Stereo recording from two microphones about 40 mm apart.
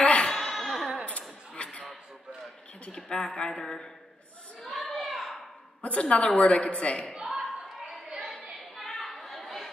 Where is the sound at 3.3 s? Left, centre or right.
Centre.